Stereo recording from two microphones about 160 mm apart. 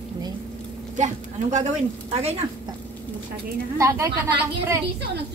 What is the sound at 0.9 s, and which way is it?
Speech, 50° right (ahead or behind).